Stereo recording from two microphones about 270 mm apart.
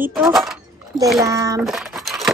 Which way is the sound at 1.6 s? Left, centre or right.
Centre.